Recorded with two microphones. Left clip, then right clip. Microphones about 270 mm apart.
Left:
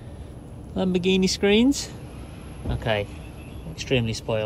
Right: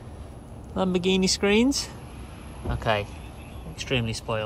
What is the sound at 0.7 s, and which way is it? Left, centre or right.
A man's voice, centre.